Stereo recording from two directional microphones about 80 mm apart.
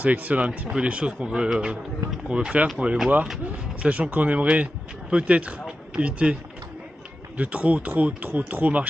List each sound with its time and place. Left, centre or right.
0.0 s speech: centre
7.3 s speech: centre